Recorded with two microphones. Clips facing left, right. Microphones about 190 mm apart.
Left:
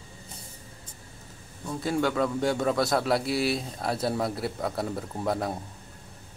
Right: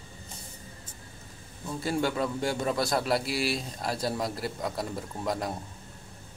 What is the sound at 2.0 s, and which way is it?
Speech, 55° left (ahead or behind).